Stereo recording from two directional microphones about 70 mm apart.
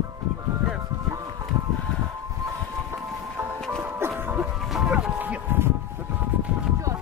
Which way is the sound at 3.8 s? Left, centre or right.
Right.